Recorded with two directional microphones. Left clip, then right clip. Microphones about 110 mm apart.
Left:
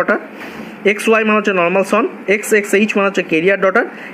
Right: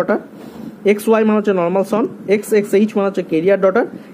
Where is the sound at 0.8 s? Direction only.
15° right (ahead or behind).